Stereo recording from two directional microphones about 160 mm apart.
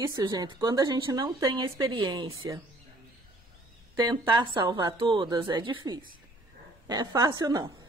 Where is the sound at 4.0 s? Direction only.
25° right (ahead or behind).